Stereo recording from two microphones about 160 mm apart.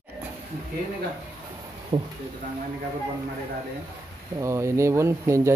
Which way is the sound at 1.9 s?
35° right (ahead or behind).